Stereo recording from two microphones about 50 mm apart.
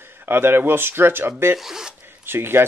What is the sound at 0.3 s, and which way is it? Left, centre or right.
Speech, right.